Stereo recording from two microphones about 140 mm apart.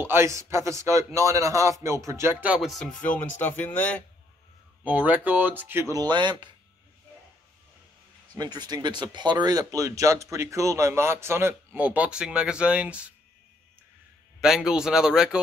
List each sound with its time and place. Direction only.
0.0 s speech: 15° right (ahead or behind)
2.5 s a man's voice: centre (ahead or behind)
3.0 s speech: 10° left (ahead or behind)
4.8 s speech: 10° right (ahead or behind); by 6.5 s 35° right (ahead or behind)
8.4 s speech: 30° right (ahead or behind); by 13.1 s 10° right (ahead or behind)
14.4 s a man's voice: 5° right (ahead or behind)